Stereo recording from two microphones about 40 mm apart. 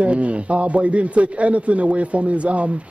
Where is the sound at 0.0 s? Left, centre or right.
Right.